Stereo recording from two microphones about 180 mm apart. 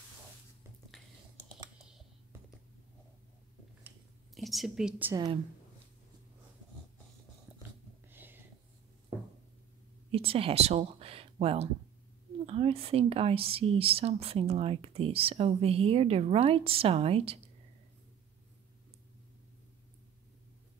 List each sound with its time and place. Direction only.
4.4 s a woman's voice: centre (ahead or behind)
5.1 s a woman's voice: 25° right (ahead or behind)
7.5 s dog: 5° right (ahead or behind)
8.1 s whispering: 10° right (ahead or behind)
10.1 s speech: 30° right (ahead or behind)